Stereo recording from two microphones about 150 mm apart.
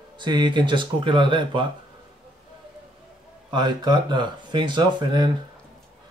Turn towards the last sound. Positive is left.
turn(degrees=-30)  # may be behind; listen again after turning